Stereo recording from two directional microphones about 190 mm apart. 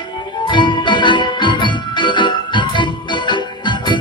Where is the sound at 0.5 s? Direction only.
25° left (ahead or behind).